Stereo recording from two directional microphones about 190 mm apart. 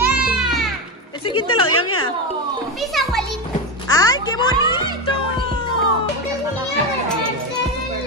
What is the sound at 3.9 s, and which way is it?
Speech, 20° left (ahead or behind).